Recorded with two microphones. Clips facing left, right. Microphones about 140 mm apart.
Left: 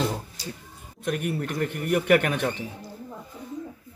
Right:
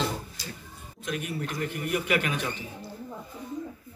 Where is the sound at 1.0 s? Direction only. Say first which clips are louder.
Left 5 dB; 55° left (ahead or behind).